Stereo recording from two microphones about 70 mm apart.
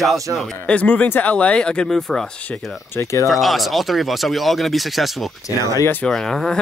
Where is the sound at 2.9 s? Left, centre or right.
Left.